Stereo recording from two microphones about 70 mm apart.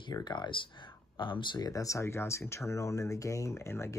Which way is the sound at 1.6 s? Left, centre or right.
Left.